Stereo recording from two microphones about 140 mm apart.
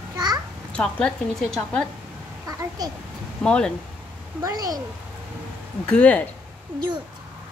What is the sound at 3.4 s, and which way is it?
Speech, 10° left (ahead or behind).